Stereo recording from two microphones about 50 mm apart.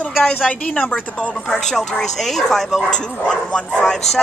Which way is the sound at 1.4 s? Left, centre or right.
Centre.